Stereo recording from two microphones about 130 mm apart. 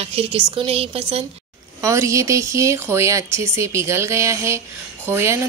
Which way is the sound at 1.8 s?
25° right (ahead or behind).